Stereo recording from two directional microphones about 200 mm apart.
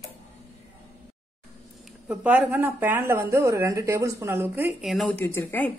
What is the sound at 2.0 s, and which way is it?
Speech, 10° right (ahead or behind).